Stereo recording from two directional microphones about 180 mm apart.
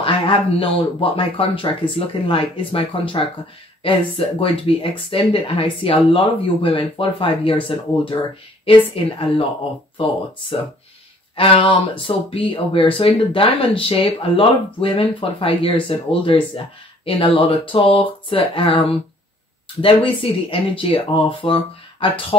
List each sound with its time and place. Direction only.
0.0 s speech: 30° left (ahead or behind)
11.3 s speech: 30° left (ahead or behind)